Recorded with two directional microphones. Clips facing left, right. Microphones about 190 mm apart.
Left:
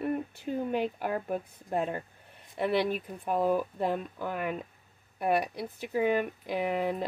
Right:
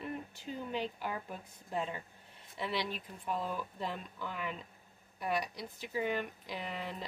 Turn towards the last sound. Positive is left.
turn(degrees=55)  # may be behind; listen again after turning